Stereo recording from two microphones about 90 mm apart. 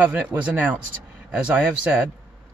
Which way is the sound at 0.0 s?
15° right (ahead or behind).